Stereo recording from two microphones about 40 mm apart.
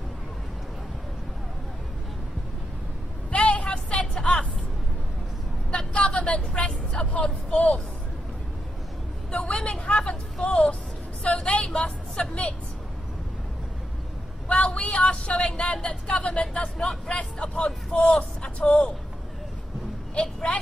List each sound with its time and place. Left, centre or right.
3.3 s vehicle: left
5.7 s vehicle: left
7.1 s speech: left
9.4 s vehicle: centre
9.7 s vehicle: left
10.4 s music: left
11.4 s vehicle: left
14.5 s a sound: left
15.5 s speech: left
18.6 s speech: left
20.2 s a woman's voice: centre